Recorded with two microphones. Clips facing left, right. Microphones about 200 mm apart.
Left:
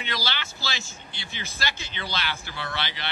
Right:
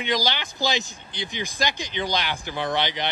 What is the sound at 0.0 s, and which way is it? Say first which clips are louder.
Speech: right 7 dB; 15° right (ahead or behind).